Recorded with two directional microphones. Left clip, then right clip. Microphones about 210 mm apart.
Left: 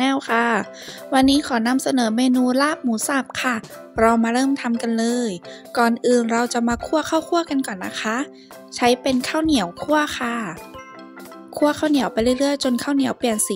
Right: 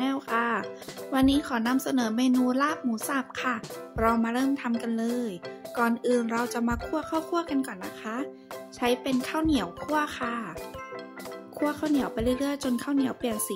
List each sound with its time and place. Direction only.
0.0 s music: 35° left (ahead or behind)
1.1 s speech: 35° left (ahead or behind)
11.6 s speech: 35° left (ahead or behind)